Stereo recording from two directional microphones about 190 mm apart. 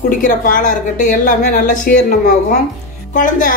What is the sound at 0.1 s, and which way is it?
A woman's voice, 45° left (ahead or behind).